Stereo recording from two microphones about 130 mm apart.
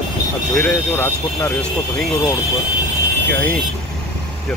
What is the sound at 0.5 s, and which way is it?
Speech, 15° left (ahead or behind).